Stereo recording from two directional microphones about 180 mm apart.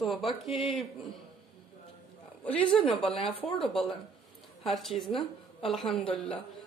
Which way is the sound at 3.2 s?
30° left (ahead or behind).